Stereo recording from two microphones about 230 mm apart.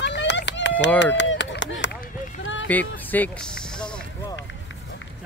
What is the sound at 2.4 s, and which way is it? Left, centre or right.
Run, left.